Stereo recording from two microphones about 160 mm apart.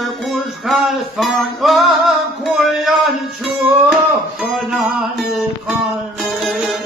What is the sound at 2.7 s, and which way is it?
Speech, centre (ahead or behind).